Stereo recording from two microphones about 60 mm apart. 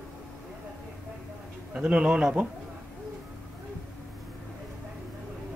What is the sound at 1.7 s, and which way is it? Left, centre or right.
Speech, right.